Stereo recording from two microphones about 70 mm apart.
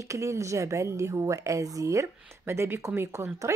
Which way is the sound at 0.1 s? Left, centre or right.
Right.